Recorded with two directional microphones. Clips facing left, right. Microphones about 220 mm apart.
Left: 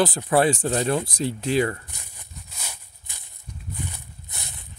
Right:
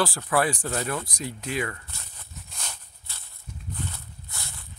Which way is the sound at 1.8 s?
15° left (ahead or behind).